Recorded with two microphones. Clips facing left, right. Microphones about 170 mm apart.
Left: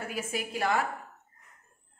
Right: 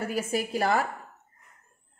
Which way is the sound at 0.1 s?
40° right (ahead or behind).